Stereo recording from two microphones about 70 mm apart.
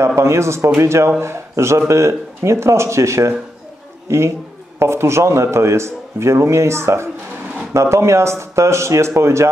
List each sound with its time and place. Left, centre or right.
0.0 s a man's voice: right